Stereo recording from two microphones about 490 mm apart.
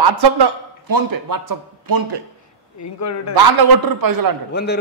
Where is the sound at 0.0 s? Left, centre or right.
Right.